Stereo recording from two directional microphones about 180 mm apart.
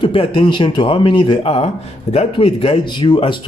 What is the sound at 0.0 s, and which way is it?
Speech, 30° left (ahead or behind).